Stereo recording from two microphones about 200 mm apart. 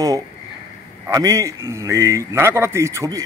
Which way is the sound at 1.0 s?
15° right (ahead or behind).